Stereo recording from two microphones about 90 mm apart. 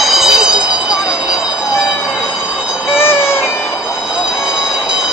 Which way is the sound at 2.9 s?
25° left (ahead or behind).